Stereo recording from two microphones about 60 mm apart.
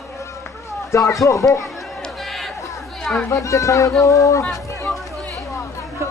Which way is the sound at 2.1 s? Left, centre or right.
Centre.